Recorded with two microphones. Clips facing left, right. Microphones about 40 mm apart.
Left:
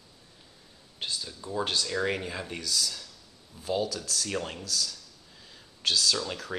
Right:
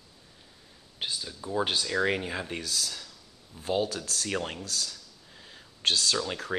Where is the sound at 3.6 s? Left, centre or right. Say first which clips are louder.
Right 1 dB; right.